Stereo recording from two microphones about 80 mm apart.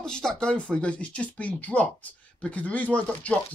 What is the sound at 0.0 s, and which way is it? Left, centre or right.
Speech, centre.